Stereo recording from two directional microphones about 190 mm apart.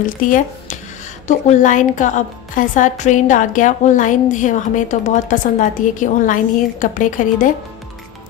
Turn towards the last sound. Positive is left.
turn(degrees=45)  # may be behind; listen again after turning